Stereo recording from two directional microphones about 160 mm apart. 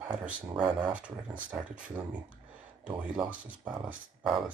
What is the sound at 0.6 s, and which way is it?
Speech, 30° right (ahead or behind).